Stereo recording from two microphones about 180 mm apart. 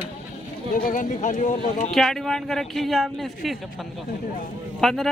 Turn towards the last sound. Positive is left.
turn(degrees=0)  # may be behind; listen again after turning